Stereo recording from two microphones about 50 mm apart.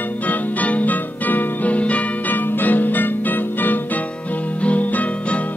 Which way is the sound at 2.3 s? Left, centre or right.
Left.